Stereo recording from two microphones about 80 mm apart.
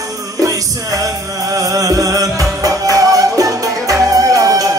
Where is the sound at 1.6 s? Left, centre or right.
Right.